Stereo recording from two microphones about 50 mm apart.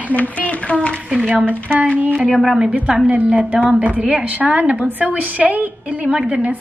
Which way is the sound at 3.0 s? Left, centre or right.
Right.